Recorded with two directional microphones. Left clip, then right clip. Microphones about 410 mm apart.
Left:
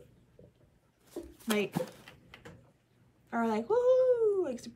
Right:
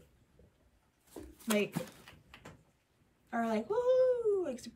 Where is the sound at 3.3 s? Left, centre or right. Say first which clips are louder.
Left 4 dB; centre.